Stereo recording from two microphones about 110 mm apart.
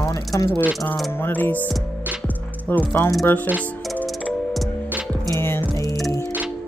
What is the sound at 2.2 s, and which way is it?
Music, 15° left (ahead or behind).